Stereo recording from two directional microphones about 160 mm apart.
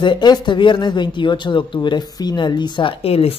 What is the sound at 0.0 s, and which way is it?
Speech, 30° left (ahead or behind).